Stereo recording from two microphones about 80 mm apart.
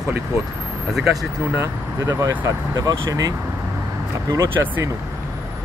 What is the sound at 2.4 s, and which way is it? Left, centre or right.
Speech, right.